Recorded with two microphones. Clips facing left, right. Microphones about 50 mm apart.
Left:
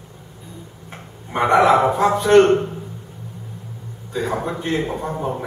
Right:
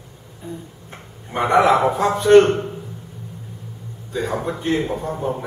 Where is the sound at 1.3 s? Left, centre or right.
Centre.